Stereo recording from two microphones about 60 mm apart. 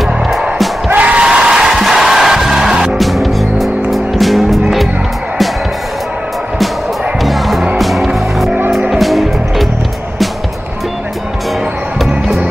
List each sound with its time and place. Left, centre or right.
0.0 s music: centre
0.8 s music: right
1.2 s music: centre
7.2 s music: centre